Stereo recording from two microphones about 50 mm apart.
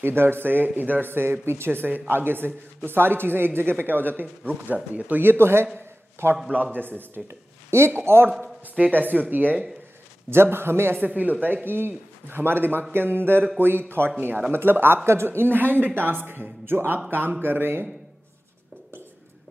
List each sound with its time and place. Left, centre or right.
0.0 s speech: right
6.5 s speech: right
7.2 s speech: right
8.9 s speech: right
10.3 s speech: right
11.0 s speech: right